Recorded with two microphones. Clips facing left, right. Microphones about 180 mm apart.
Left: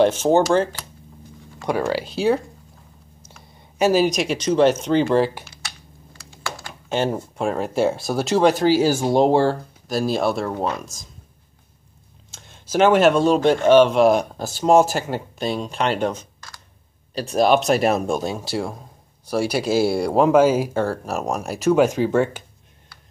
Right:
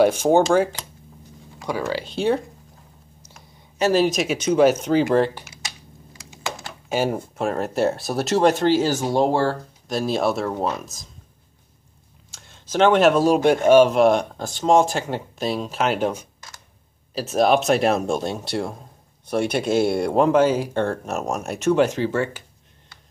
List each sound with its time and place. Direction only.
0.0 s speech: 10° right (ahead or behind)
2.0 s speech: 5° left (ahead or behind)
3.7 s speech: 10° left (ahead or behind)
4.0 s speech: centre (ahead or behind)
6.1 s computer keyboard: 20° right (ahead or behind)
6.9 s speech: 10° right (ahead or behind); by 9.6 s 15° left (ahead or behind)
9.8 s speech: centre (ahead or behind)
12.3 s a sound: 20° left (ahead or behind)
12.6 s speech: 10° left (ahead or behind)
21.8 s speech: 15° left (ahead or behind)